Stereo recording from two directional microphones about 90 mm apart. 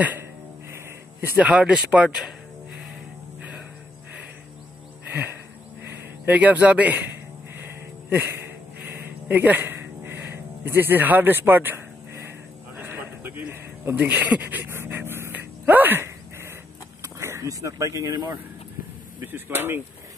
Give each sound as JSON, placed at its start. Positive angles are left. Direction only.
{"t": 1.4, "sound": "speech", "side_deg": -10}
{"t": 5.1, "sound": "a sound", "side_deg": -25}
{"t": 6.2, "sound": "speech", "side_deg": -15}
{"t": 7.5, "sound": "a sound", "side_deg": -25}
{"t": 17.0, "sound": "speech", "side_deg": -30}
{"t": 19.2, "sound": "speech", "side_deg": -25}